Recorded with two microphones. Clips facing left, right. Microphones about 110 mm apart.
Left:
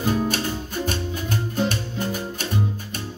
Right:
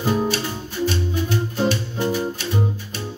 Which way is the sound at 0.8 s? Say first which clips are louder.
Right 4 dB; 45° left (ahead or behind).